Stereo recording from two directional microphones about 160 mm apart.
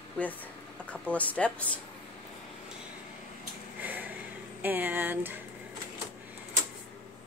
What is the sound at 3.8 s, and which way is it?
Vehicle, 10° right (ahead or behind).